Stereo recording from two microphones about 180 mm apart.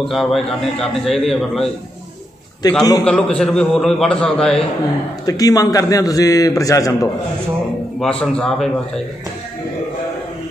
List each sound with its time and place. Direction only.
0.1 s a man's voice: centre (ahead or behind)
2.6 s a man's voice: 20° left (ahead or behind)
3.0 s a man's voice: 5° left (ahead or behind)
5.2 s a man's voice: 20° left (ahead or behind)
8.0 s a man's voice: 5° left (ahead or behind)